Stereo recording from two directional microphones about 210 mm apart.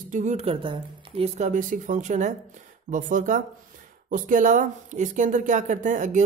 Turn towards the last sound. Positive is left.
turn(degrees=-35)  # may be behind; listen again after turning